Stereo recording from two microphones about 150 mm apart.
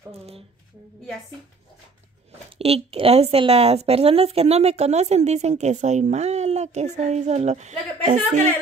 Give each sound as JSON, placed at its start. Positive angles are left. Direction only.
{"t": 2.5, "sound": "a woman's voice", "side_deg": -40}